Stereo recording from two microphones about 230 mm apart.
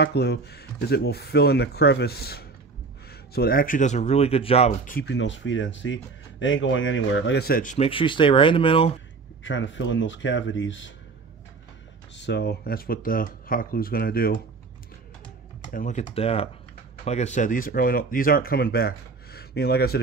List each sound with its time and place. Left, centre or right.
0.0 s speech: left
9.4 s speech: left
12.2 s speech: left
15.6 s speech: left